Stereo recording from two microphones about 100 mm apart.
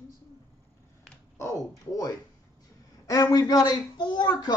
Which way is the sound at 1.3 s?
30° left (ahead or behind).